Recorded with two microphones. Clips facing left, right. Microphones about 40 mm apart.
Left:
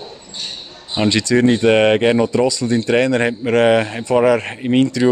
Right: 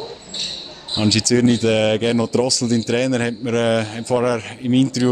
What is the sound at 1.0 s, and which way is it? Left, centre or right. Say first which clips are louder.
Speech: left 2 dB; left.